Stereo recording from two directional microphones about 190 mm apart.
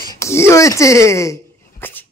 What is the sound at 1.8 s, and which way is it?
Dog, 10° left (ahead or behind).